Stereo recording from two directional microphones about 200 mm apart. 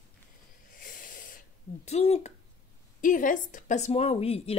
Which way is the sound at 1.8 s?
35° left (ahead or behind).